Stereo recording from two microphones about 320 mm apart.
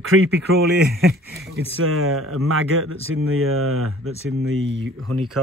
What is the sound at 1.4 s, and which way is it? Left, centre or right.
Speech, right.